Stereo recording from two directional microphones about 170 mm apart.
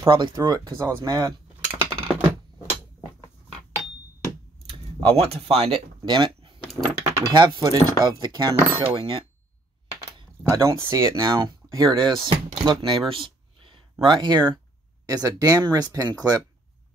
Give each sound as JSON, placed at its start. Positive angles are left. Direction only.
{"t": 0.1, "sound": "speech", "side_deg": -25}
{"t": 1.6, "sound": "a sound", "side_deg": -10}
{"t": 5.0, "sound": "speech", "side_deg": -35}
{"t": 10.5, "sound": "speech", "side_deg": -20}
{"t": 13.1, "sound": "a sound", "side_deg": -30}
{"t": 14.0, "sound": "speech", "side_deg": -25}